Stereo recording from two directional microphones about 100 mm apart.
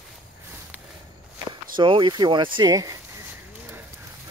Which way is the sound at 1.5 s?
55° right (ahead or behind).